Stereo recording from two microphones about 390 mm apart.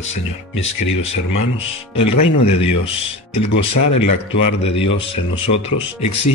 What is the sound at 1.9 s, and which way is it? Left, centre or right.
Speech, left.